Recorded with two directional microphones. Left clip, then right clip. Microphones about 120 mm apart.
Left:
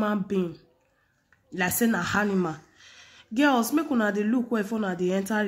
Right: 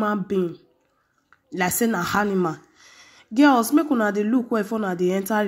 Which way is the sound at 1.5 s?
35° right (ahead or behind).